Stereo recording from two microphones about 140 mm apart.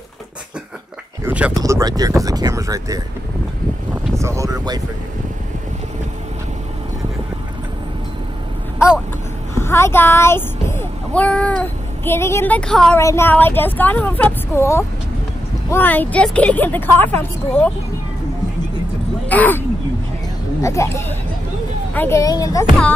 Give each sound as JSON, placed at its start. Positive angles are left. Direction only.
{"t": 1.2, "sound": "a sound", "side_deg": -10}
{"t": 1.5, "sound": "speech", "side_deg": -25}
{"t": 4.2, "sound": "speech", "side_deg": -20}
{"t": 8.7, "sound": "a sound", "side_deg": -5}
{"t": 9.6, "sound": "speech", "side_deg": 20}
{"t": 12.9, "sound": "speech", "side_deg": 20}
{"t": 19.2, "sound": "speech", "side_deg": 10}
{"t": 20.6, "sound": "speech", "side_deg": 20}
{"t": 22.2, "sound": "speech", "side_deg": 25}